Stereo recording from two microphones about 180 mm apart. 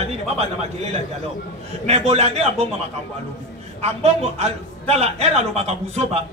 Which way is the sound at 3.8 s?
35° right (ahead or behind).